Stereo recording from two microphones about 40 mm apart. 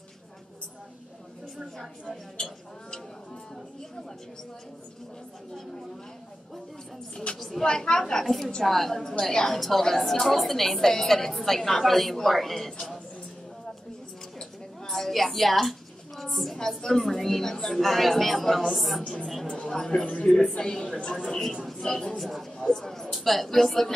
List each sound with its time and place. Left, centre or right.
2.3 s a sound: centre
7.3 s a woman's voice: centre
7.6 s a woman's voice: centre
14.4 s a sound: centre
16.5 s a woman's voice: centre
19.7 s a woman's voice: centre
21.9 s a woman's voice: centre